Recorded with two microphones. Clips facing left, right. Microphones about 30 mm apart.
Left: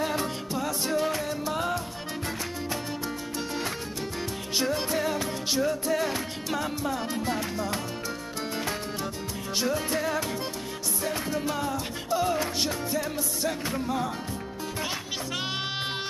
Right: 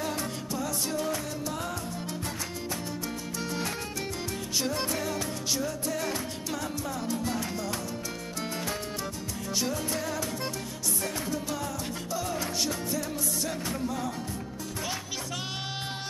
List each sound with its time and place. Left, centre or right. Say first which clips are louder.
0.0 s music: left 4 dB; left
4.8 s music: left 4 dB; left
9.6 s music: left 4 dB; left